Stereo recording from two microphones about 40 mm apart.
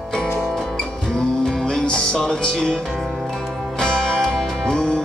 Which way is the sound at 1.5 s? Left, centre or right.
Centre.